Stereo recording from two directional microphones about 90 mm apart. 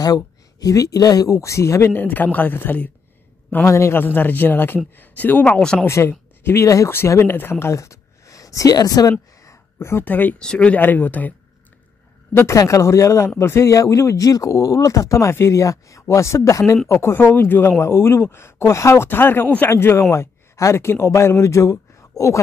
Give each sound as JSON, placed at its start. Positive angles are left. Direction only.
{"t": 0.0, "sound": "speech", "side_deg": 45}
{"t": 5.6, "sound": "speech", "side_deg": 10}
{"t": 5.9, "sound": "speech", "side_deg": 30}
{"t": 9.4, "sound": "a sound", "side_deg": 35}
{"t": 10.4, "sound": "speech", "side_deg": 10}
{"t": 12.4, "sound": "speech", "side_deg": 35}